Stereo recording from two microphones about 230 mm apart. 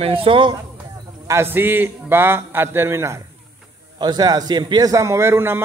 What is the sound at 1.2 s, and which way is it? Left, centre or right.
A man's voice, centre.